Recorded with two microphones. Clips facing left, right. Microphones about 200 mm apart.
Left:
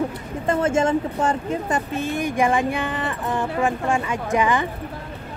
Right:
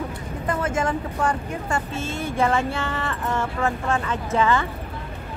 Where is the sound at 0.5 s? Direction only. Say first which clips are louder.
Left 5 dB; 25° left (ahead or behind).